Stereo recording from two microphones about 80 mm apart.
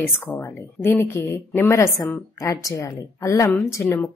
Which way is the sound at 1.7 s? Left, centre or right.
Left.